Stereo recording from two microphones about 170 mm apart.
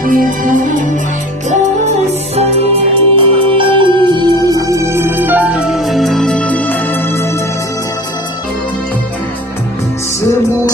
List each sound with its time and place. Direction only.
0.0 s music: 55° right (ahead or behind); by 7.3 s 15° left (ahead or behind)